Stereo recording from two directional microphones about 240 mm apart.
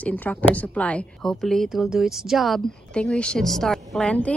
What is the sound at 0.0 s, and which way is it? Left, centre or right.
A woman's voice, centre.